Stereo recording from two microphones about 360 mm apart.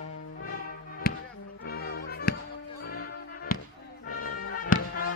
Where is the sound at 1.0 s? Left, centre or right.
Left.